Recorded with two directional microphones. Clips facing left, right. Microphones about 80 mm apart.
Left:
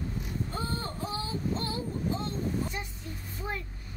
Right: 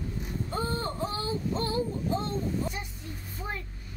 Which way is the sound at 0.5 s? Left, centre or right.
Right.